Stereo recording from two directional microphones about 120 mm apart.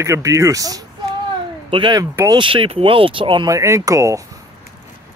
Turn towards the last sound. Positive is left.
turn(degrees=-25)  # may be behind; listen again after turning